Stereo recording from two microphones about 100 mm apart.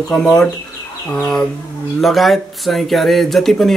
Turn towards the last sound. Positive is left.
turn(degrees=0)  # may be behind; listen again after turning